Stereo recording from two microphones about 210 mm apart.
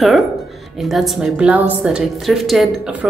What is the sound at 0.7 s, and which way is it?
Speech, centre (ahead or behind).